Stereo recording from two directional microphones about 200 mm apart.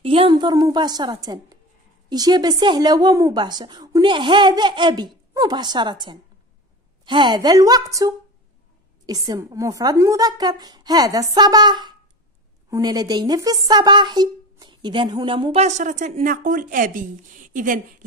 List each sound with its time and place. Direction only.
0.0 s a woman's voice: 25° right (ahead or behind)
9.0 s speech: 20° right (ahead or behind); by 17.7 s 40° right (ahead or behind)